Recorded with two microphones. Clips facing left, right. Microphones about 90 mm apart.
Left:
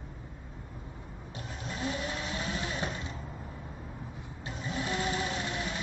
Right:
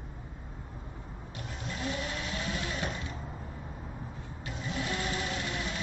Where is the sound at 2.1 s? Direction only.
25° left (ahead or behind).